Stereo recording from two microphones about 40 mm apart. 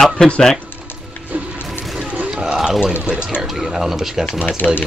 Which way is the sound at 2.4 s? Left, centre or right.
Centre.